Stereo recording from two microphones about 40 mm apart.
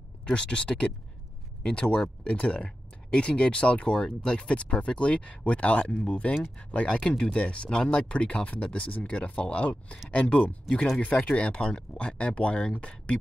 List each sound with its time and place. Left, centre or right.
0.2 s speech: left